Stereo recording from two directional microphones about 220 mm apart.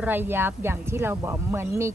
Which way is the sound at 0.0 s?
10° right (ahead or behind).